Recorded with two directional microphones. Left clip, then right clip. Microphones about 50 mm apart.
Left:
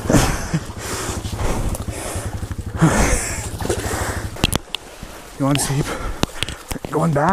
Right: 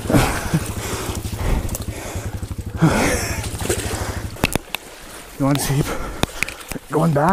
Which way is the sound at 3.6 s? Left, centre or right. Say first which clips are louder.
Left 1 dB; right.